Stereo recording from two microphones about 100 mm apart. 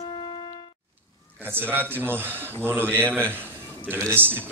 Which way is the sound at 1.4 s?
20° right (ahead or behind).